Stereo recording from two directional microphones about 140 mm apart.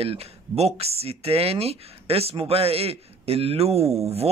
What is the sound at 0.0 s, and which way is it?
Speech, 45° right (ahead or behind).